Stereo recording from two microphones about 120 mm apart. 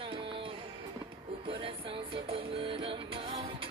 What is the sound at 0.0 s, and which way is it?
Music, 45° right (ahead or behind).